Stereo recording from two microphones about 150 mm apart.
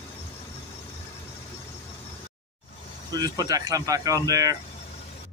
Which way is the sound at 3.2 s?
25° right (ahead or behind).